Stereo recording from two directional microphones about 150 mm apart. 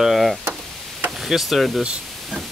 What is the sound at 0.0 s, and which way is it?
Speech, centre (ahead or behind).